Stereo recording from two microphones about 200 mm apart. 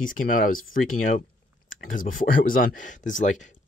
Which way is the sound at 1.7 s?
45° left (ahead or behind).